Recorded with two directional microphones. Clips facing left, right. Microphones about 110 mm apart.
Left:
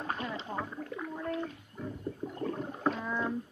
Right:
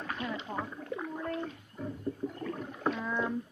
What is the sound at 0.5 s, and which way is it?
Speech, 25° left (ahead or behind).